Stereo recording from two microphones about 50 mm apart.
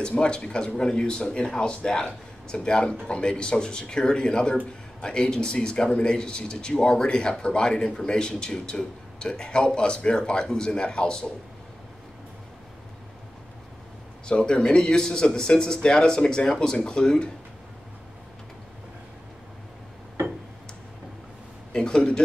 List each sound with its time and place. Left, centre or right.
0.0 s speech: centre
14.2 s speech: centre
21.7 s speech: centre